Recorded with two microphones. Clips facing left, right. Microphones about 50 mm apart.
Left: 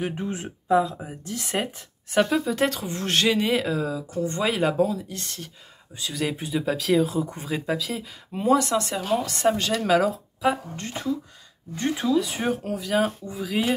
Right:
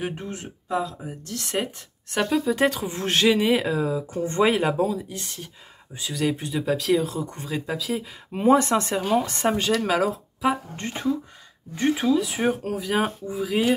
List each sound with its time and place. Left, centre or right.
0.3 s speech: left
1.0 s speech: centre
4.1 s speech: right
4.6 s speech: centre
6.1 s speech: centre
8.3 s speech: right
8.9 s speech: centre
10.8 s speech: right
11.7 s speech: centre